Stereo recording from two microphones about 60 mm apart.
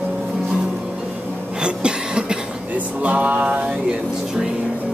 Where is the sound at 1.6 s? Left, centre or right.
Centre.